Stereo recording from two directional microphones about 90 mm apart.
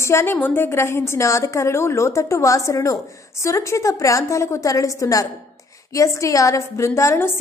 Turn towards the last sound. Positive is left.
turn(degrees=30)  # may be behind; listen again after turning